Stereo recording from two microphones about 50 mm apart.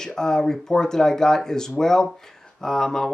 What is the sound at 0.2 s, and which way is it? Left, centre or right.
Speech, centre.